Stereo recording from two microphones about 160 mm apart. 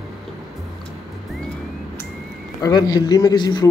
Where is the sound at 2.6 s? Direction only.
25° left (ahead or behind).